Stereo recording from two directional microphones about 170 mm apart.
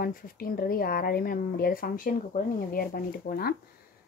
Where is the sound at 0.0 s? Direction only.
55° left (ahead or behind).